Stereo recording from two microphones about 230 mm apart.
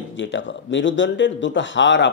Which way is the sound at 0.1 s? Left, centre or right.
Left.